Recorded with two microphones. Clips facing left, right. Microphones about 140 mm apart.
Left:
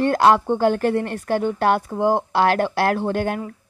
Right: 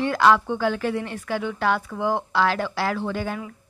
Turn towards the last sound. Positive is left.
turn(degrees=60)  # may be behind; listen again after turning